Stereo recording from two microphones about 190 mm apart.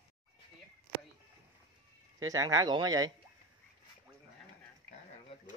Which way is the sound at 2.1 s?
20° right (ahead or behind).